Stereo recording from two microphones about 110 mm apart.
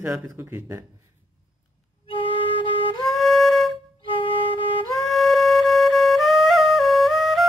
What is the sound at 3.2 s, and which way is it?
Music, centre (ahead or behind).